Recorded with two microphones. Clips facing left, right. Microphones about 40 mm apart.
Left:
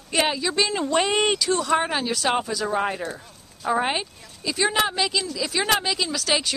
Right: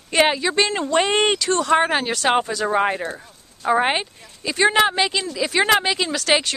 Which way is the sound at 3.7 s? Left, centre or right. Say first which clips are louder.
Right 4 dB; right.